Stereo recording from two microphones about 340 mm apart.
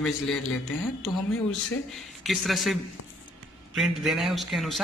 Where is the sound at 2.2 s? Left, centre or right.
Centre.